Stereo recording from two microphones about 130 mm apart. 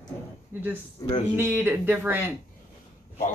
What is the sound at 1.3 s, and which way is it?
Speech, 15° right (ahead or behind).